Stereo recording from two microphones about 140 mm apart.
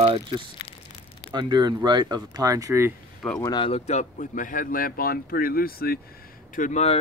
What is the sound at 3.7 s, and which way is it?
Speech, 55° left (ahead or behind).